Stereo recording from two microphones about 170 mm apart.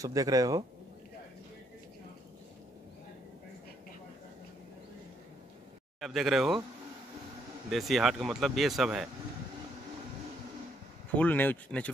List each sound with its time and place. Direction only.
0.0 s speech: 20° right (ahead or behind)
5.9 s speech: centre (ahead or behind)
7.7 s speech: centre (ahead or behind)
11.1 s speech: 10° left (ahead or behind)